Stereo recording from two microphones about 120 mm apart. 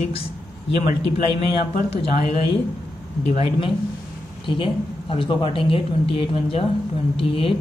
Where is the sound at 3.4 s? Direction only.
45° left (ahead or behind).